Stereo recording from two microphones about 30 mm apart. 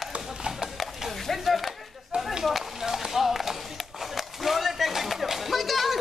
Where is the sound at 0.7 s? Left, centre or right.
Centre.